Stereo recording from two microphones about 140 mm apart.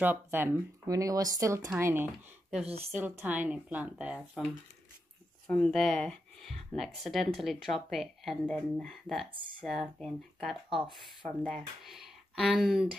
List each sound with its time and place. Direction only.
0.0 s speech: 15° right (ahead or behind)
0.8 s speech: 25° right (ahead or behind)
2.6 s speech: 45° right (ahead or behind)
2.9 s speech: 15° right (ahead or behind)
5.5 s speech: 5° left (ahead or behind)